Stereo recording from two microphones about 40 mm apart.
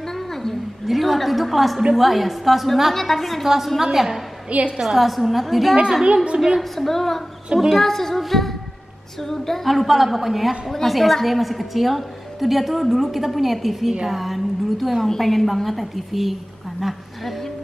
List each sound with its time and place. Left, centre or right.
0.3 s a sound: centre
0.8 s a woman's voice: centre
4.9 s a woman's voice: centre
6.0 s a woman's voice: right
6.8 s a woman's voice: centre